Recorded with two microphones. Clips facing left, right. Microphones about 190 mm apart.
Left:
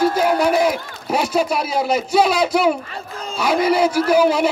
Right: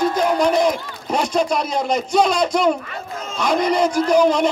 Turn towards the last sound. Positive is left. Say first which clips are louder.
# even
turn(degrees=5)  # may be behind; listen again after turning